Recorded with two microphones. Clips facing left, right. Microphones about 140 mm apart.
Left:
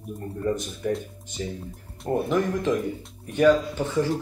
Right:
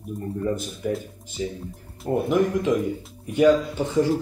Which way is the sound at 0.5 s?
5° right (ahead or behind).